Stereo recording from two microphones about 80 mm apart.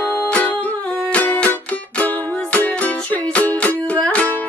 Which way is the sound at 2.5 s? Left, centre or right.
Centre.